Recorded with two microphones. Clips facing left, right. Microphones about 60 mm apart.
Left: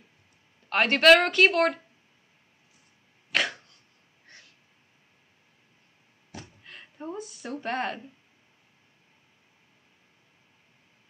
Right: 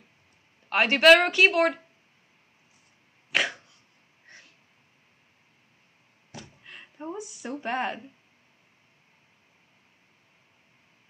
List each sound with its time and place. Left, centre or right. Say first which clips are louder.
0.7 s speech: right 1 dB; centre
3.3 s throat clearing: right 1 dB; centre
6.6 s a sound: right 1 dB; centre
7.6 s speech: right 1 dB; centre